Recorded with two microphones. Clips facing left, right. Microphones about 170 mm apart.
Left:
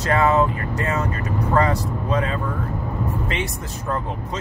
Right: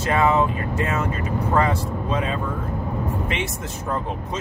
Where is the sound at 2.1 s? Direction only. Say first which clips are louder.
Left 2 dB; 15° right (ahead or behind).